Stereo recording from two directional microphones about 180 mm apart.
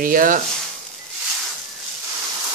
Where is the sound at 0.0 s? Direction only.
50° right (ahead or behind).